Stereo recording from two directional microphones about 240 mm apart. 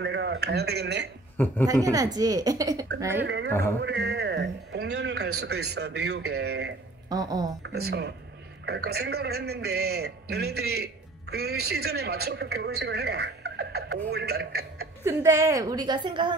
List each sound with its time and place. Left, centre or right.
0.0 s a man's voice: right
1.7 s a woman's voice: centre
3.3 s a man's voice: right
7.1 s a woman's voice: centre
7.6 s a man's voice: right
15.0 s a woman's voice: centre